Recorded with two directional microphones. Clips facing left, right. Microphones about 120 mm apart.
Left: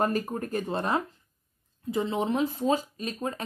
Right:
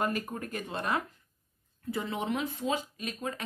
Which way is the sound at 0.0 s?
35° left (ahead or behind).